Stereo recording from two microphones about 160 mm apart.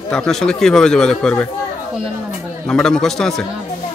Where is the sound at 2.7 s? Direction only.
5° left (ahead or behind).